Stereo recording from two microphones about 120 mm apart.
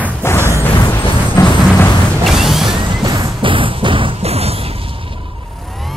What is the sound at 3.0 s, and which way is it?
Music, 35° right (ahead or behind).